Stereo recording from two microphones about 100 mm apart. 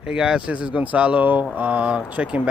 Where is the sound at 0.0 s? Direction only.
5° right (ahead or behind).